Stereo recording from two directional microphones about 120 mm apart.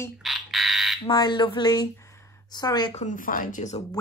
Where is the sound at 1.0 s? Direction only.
35° left (ahead or behind).